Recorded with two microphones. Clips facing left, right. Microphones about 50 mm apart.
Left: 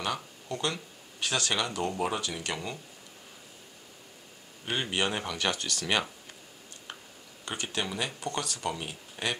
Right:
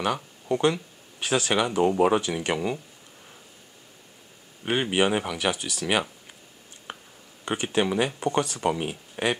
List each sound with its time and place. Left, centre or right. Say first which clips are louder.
0.0 s speech: right 6 dB; right
2.0 s speech: right 9 dB; right
4.6 s speech: right 7 dB; centre
6.9 s a sound: right 5 dB; centre
7.4 s speech: right 9 dB; right